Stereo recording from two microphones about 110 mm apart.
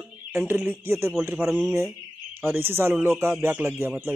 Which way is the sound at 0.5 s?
20° right (ahead or behind).